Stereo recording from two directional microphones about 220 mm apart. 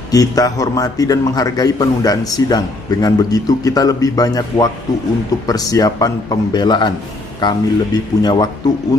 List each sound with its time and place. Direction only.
0.1 s a man's voice: 15° left (ahead or behind)